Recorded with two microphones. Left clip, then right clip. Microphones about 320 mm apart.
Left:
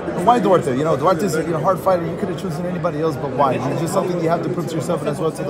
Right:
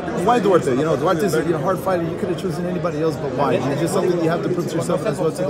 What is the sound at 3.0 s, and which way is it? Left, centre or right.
Speech, centre.